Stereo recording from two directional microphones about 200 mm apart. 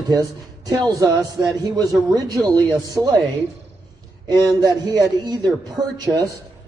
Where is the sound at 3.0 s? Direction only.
Centre (ahead or behind).